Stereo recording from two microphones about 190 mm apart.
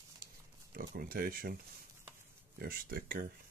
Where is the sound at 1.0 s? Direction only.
50° right (ahead or behind).